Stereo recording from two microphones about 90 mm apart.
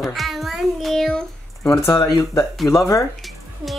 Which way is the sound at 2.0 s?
35° left (ahead or behind).